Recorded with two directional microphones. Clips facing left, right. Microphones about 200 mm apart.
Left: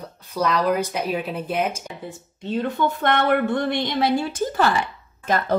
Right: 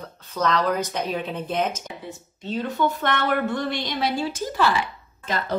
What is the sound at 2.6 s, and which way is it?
A woman's voice, 55° left (ahead or behind).